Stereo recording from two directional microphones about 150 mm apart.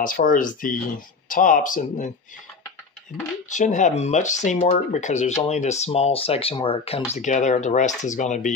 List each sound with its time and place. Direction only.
0.0 s speech: 65° left (ahead or behind)
3.4 s speech: 55° left (ahead or behind)
7.1 s speech: 50° left (ahead or behind)